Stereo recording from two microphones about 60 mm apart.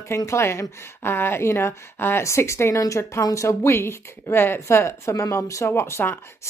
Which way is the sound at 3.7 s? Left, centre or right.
Left.